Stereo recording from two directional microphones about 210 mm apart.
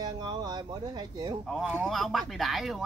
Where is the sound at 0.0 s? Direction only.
20° right (ahead or behind).